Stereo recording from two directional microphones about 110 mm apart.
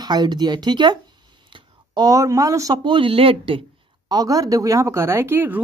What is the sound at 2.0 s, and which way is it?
Speech, 30° right (ahead or behind).